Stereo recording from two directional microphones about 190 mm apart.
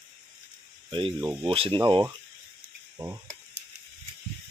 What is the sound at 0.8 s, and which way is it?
Speech, 25° right (ahead or behind).